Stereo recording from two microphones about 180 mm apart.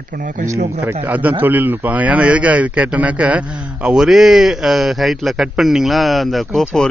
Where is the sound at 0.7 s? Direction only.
10° right (ahead or behind).